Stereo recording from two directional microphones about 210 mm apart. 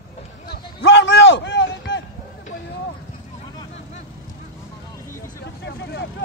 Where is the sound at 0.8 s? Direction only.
60° left (ahead or behind).